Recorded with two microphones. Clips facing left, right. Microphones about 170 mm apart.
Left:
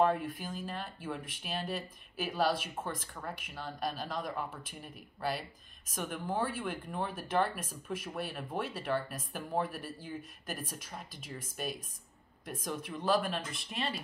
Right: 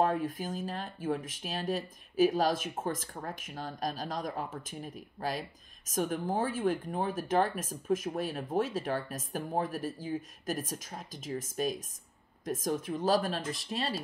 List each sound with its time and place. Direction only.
0.0 s speech: 45° right (ahead or behind)